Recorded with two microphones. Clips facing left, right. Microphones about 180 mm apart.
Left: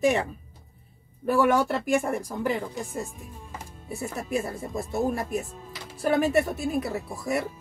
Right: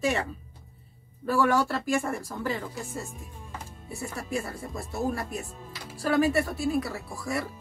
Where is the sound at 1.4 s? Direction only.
20° left (ahead or behind).